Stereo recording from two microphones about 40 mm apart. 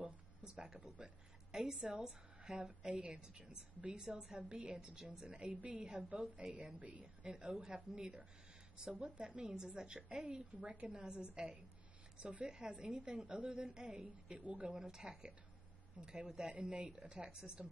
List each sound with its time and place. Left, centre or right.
0.6 s a woman's voice: centre
4.4 s a woman's voice: right
5.3 s a woman's voice: right
14.4 s a woman's voice: right
14.9 s a woman's voice: centre